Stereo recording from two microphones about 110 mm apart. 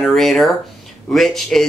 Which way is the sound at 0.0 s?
5° left (ahead or behind).